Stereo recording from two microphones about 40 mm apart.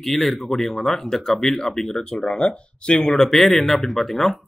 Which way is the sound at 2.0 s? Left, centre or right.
Centre.